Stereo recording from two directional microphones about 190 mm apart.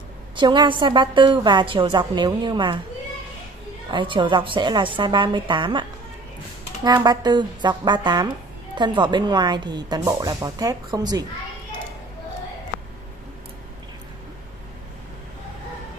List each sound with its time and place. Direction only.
0.4 s speech: 25° right (ahead or behind)
3.9 s speech: 25° right (ahead or behind)